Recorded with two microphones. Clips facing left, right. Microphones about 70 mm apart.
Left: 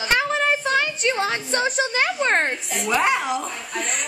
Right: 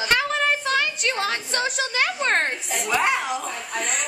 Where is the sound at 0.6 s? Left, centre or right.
Left.